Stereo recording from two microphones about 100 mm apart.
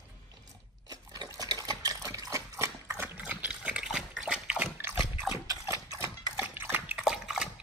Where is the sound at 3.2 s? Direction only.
15° right (ahead or behind).